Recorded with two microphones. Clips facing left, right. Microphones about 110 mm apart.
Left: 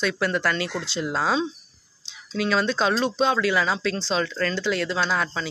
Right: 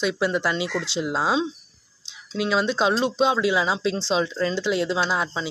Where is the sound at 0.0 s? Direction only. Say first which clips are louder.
Right 1 dB; 15° right (ahead or behind).